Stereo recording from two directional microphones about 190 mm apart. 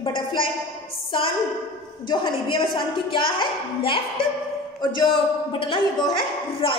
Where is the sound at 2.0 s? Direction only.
25° left (ahead or behind).